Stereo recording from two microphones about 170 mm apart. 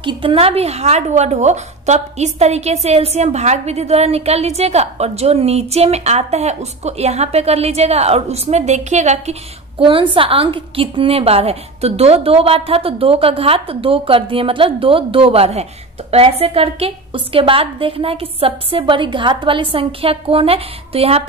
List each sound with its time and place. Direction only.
0.0 s speech: 30° right (ahead or behind)